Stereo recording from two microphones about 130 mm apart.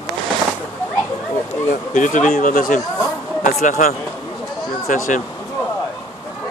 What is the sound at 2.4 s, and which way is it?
Speech, 90° left.